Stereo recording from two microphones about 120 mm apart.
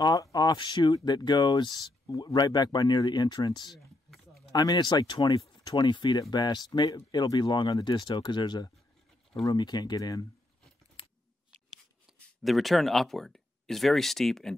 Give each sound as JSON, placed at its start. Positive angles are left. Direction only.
{"t": 0.0, "sound": "speech", "side_deg": 30}
{"t": 12.1, "sound": "a sound", "side_deg": -5}
{"t": 12.4, "sound": "speech", "side_deg": 0}